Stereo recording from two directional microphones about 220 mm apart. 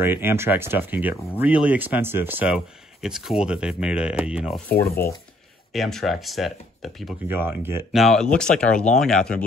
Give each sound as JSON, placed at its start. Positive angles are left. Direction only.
{"t": 0.0, "sound": "speech", "side_deg": -10}
{"t": 4.6, "sound": "speech", "side_deg": 10}
{"t": 7.2, "sound": "speech", "side_deg": -10}
{"t": 8.0, "sound": "speech", "side_deg": 0}